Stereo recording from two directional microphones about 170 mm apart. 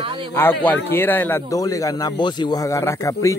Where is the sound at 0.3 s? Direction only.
10° left (ahead or behind).